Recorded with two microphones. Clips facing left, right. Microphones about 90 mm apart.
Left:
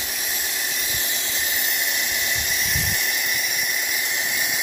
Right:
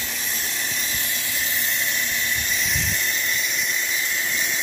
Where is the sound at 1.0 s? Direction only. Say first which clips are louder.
Even; 20° left (ahead or behind).